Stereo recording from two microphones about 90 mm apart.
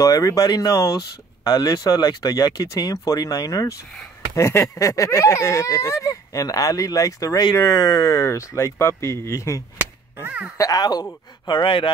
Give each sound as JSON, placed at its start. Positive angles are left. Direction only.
{"t": 0.0, "sound": "speech", "side_deg": 40}
{"t": 10.2, "sound": "speech", "side_deg": -15}
{"t": 10.6, "sound": "speech", "side_deg": 45}
{"t": 11.4, "sound": "speech", "side_deg": 65}